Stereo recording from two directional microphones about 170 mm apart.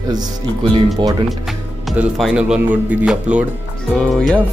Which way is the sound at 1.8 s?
5° right (ahead or behind).